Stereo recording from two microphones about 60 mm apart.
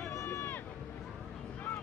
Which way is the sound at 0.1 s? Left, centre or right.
Left.